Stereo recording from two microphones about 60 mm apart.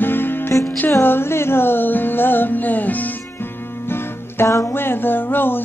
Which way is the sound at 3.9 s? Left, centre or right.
Left.